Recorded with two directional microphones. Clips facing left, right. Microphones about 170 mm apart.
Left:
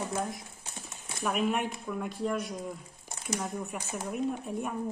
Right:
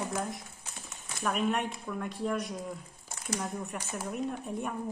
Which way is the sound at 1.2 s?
5° left (ahead or behind).